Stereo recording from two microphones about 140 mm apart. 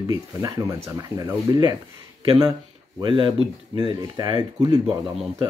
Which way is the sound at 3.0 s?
35° right (ahead or behind).